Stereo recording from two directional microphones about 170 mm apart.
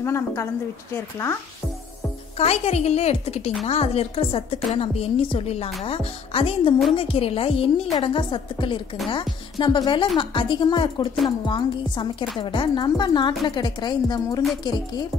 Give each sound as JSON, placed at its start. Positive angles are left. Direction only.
{"t": 0.0, "sound": "a woman's voice", "side_deg": 15}
{"t": 2.3, "sound": "a woman's voice", "side_deg": 35}